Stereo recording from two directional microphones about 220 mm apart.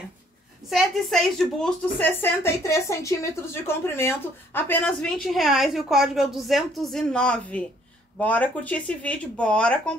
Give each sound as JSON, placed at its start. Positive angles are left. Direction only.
{"t": 0.7, "sound": "a woman's voice", "side_deg": 0}